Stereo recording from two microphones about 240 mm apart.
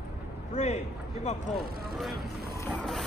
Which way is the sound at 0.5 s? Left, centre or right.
Left.